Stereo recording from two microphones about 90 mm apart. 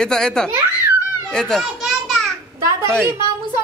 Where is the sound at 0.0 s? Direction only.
5° left (ahead or behind).